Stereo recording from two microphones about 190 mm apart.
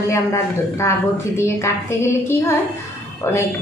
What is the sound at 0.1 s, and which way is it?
A woman's voice, 15° left (ahead or behind).